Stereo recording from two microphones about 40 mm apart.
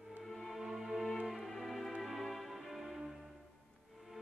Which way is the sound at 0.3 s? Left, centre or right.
Centre.